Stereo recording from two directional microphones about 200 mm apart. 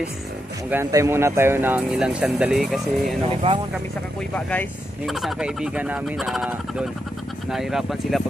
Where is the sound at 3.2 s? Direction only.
25° right (ahead or behind).